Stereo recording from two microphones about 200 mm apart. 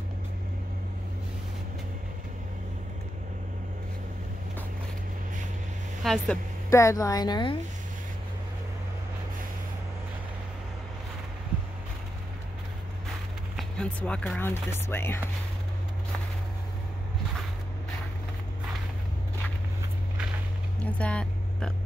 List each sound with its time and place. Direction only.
6.0 s speech: centre (ahead or behind)
6.7 s speech: 15° left (ahead or behind)
13.6 s speech: 5° left (ahead or behind)
20.8 s vehicle: 5° left (ahead or behind)